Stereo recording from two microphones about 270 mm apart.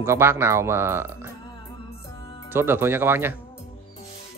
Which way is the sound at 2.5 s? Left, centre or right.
Centre.